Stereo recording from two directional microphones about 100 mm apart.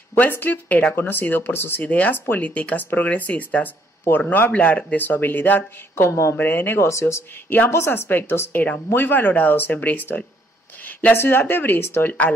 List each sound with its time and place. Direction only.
0.1 s speech: 20° left (ahead or behind)